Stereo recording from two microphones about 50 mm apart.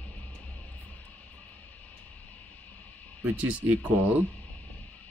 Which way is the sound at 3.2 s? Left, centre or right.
Right.